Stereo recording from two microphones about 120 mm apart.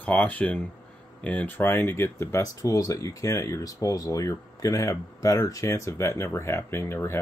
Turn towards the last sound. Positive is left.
turn(degrees=20)  # may be behind; listen again after turning